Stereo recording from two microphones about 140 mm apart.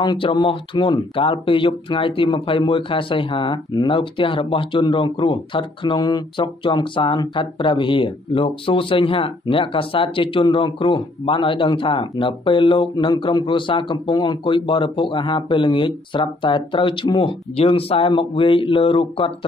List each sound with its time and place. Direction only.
0.0 s speech: 35° left (ahead or behind)